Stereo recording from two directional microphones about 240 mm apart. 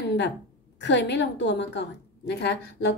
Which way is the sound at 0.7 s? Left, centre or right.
Left.